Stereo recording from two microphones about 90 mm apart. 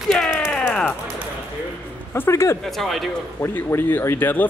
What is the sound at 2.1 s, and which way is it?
Speech, 30° left (ahead or behind).